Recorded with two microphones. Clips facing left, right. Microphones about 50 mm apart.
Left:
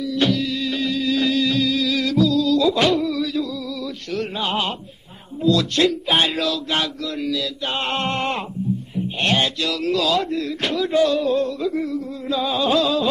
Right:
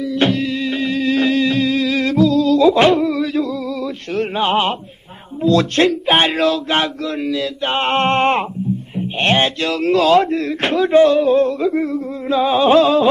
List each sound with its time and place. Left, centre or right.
0.0 s music: right
5.4 s speech: right